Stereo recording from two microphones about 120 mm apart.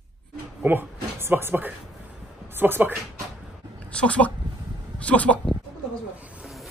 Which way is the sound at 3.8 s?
10° left (ahead or behind).